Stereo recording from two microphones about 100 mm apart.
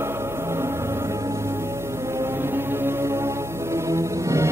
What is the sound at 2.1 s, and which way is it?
Music, 25° right (ahead or behind).